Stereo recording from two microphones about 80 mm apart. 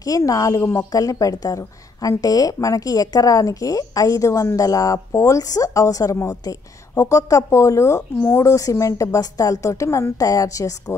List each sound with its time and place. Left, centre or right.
0.0 s a woman's voice: left